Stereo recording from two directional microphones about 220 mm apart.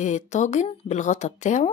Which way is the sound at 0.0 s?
30° left (ahead or behind).